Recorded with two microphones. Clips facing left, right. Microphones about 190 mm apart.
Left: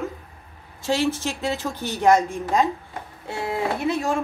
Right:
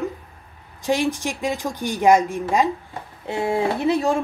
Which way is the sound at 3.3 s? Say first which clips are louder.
Right 4 dB; 30° right (ahead or behind).